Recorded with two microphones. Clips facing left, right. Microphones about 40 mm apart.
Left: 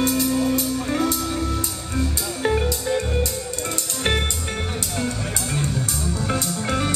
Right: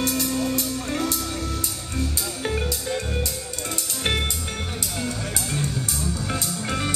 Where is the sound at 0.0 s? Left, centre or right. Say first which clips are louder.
Left 4 dB; centre.